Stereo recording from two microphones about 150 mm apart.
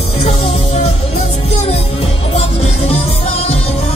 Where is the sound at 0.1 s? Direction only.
45° left (ahead or behind).